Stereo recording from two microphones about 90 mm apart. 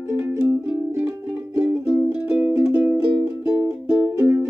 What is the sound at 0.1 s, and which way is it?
Music, 20° right (ahead or behind).